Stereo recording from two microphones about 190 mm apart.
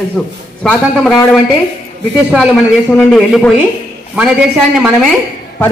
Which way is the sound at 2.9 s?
Centre (ahead or behind).